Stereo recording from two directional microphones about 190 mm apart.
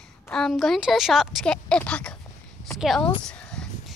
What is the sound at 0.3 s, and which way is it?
Speech, centre (ahead or behind).